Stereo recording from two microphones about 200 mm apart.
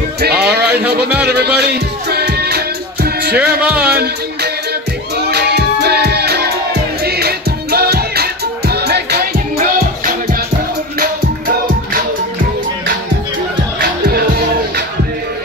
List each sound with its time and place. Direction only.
0.2 s speech: 55° right (ahead or behind)
1.2 s music: 55° right (ahead or behind)
13.7 s music: 45° right (ahead or behind)